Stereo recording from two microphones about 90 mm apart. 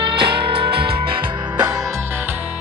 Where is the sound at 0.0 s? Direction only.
75° right (ahead or behind).